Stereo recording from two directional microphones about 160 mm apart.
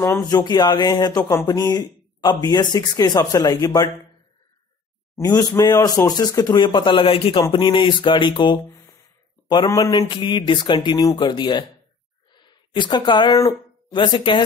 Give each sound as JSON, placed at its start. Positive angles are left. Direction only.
{"t": 0.0, "sound": "speech", "side_deg": 20}
{"t": 5.1, "sound": "speech", "side_deg": 20}